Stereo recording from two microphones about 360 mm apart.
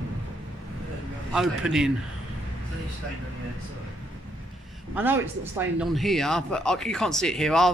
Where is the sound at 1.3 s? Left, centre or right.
Centre.